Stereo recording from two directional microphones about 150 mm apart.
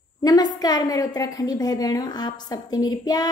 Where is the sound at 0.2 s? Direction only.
25° left (ahead or behind).